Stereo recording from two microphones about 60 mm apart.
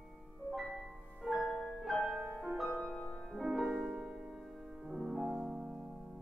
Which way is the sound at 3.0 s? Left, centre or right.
Centre.